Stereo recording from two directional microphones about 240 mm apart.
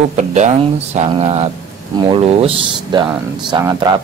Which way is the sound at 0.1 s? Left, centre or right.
Right.